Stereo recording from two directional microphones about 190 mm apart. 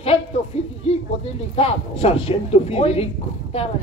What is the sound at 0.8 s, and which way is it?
A man's voice, 30° left (ahead or behind).